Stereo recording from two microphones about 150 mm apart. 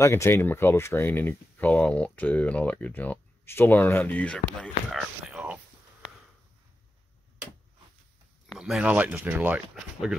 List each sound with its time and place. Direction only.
0.0 s speech: 15° left (ahead or behind)
4.9 s a sound: 5° right (ahead or behind)
8.5 s speech: centre (ahead or behind)